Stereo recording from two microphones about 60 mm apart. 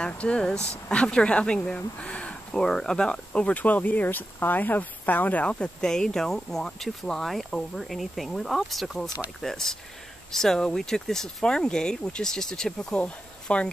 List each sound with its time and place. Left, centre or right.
0.0 s speech: centre